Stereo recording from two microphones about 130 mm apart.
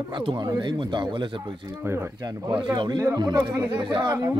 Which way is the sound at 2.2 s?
35° right (ahead or behind).